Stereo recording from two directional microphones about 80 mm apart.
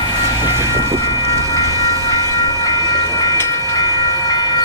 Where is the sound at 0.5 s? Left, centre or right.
Right.